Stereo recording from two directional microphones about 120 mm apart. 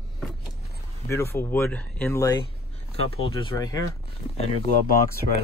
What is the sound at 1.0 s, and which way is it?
Speech, 20° left (ahead or behind).